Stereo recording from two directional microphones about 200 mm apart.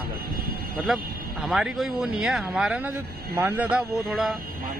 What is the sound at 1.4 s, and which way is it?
Speech, centre (ahead or behind).